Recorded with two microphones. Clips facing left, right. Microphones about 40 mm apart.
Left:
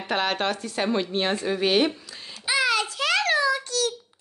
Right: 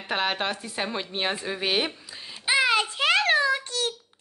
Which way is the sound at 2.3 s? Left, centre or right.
Right.